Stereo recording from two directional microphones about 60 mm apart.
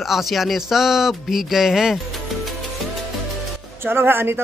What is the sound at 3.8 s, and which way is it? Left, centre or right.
Speech, right.